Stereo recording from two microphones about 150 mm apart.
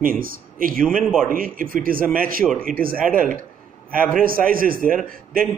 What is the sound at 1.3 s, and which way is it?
A man's voice, 70° right (ahead or behind).